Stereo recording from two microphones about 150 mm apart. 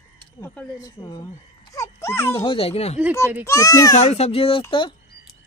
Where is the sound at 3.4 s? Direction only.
20° left (ahead or behind).